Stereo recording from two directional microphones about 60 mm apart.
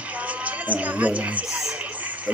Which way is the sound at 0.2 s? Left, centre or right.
Right.